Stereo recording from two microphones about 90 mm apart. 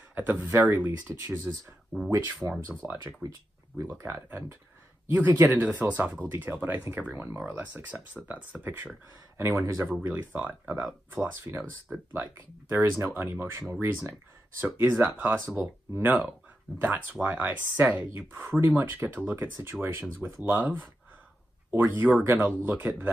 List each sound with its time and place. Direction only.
0.1 s speech: 20° right (ahead or behind)
1.9 s speech: centre (ahead or behind)
2.8 s speech: 20° right (ahead or behind)
4.0 s speech: 30° right (ahead or behind)
9.4 s speech: 30° right (ahead or behind)
11.5 s speech: 25° right (ahead or behind)